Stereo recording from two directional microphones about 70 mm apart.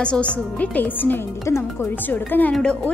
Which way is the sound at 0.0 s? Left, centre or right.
Centre.